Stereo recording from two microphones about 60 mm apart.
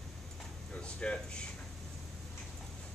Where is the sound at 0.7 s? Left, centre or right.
Centre.